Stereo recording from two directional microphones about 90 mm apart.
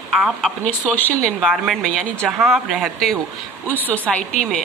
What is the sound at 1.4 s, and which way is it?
Speech, 5° right (ahead or behind).